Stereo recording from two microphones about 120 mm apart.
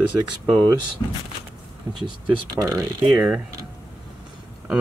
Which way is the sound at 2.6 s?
25° right (ahead or behind).